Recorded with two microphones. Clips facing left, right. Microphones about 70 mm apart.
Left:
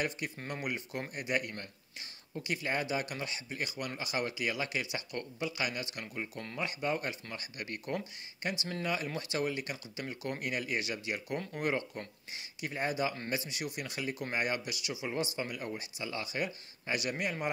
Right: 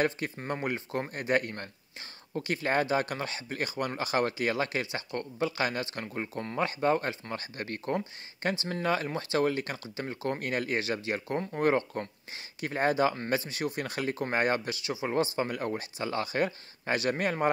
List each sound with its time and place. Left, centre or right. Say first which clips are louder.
0.4 s speech: right 6 dB; right
13.1 s speech: right 6 dB; right
15.3 s speech: right 7 dB; right